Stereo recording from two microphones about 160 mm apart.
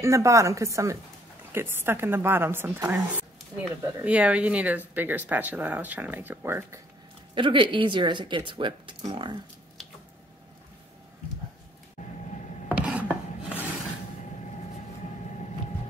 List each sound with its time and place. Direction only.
0.0 s speech: 20° right (ahead or behind)
7.3 s speech: 30° right (ahead or behind)
12.0 s vehicle: 45° left (ahead or behind)
12.6 s chopping: 5° right (ahead or behind)
13.1 s filing: 5° right (ahead or behind)
14.4 s vehicle: 45° left (ahead or behind)